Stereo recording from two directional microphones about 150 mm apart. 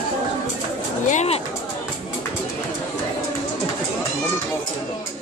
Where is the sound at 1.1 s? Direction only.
50° left (ahead or behind).